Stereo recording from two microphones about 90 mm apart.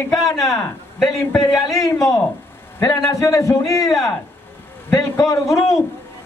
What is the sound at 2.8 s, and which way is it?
A man's voice, 35° left (ahead or behind).